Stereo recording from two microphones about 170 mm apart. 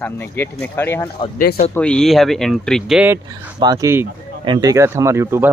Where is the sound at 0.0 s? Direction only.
10° left (ahead or behind).